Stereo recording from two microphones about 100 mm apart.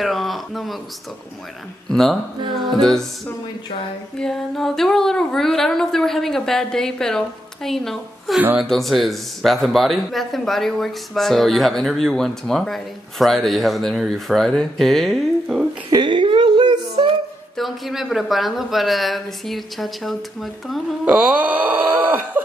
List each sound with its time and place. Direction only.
0.0 s a sound: centre (ahead or behind)
1.9 s speech: centre (ahead or behind)
4.2 s speech: 5° left (ahead or behind)
15.9 s a sound: 55° right (ahead or behind)
17.6 s speech: centre (ahead or behind)
21.0 s speech: 10° right (ahead or behind)